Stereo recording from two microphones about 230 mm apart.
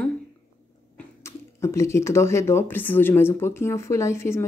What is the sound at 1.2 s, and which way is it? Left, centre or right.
Speech, centre.